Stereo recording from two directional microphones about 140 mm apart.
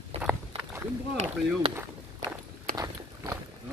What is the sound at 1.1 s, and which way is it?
Speech, 45° right (ahead or behind).